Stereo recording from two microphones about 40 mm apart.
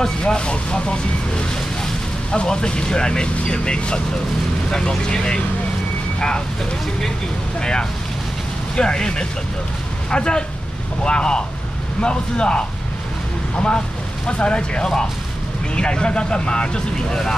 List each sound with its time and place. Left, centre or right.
0.0 s speech: left
8.7 s speech: centre